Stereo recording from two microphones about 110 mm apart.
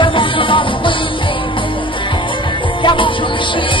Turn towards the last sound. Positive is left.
turn(degrees=50)  # may be behind; listen again after turning